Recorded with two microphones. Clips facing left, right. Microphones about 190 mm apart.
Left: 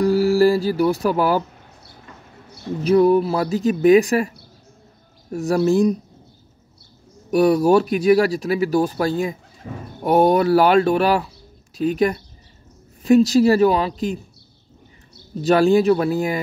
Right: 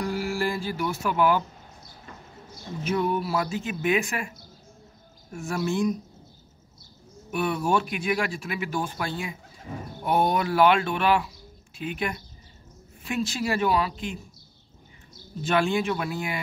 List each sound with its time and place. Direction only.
0.0 s music: 35° left (ahead or behind)
2.8 s speech: 35° left (ahead or behind)
5.3 s speech: 35° left (ahead or behind)
7.2 s speech: 40° left (ahead or behind)
15.4 s speech: 40° left (ahead or behind)